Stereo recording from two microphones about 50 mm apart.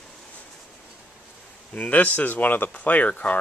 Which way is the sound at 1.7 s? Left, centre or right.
Left.